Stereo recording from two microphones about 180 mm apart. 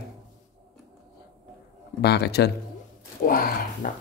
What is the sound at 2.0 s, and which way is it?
Speech, 65° left (ahead or behind).